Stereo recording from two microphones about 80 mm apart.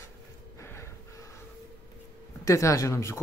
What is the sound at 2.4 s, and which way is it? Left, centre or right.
Speech, left.